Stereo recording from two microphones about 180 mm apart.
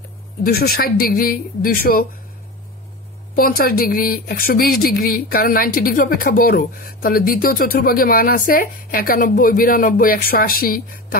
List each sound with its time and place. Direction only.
0.4 s speech: 60° left (ahead or behind)
3.3 s speech: 55° left (ahead or behind)